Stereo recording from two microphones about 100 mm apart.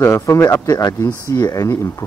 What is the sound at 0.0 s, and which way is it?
Speech, 25° left (ahead or behind).